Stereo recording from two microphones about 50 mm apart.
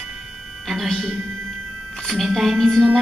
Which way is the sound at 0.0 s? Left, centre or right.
Centre.